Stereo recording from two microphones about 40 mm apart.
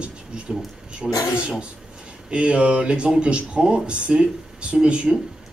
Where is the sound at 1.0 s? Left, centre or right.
Centre.